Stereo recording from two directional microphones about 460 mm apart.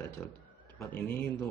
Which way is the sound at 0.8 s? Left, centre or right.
Centre.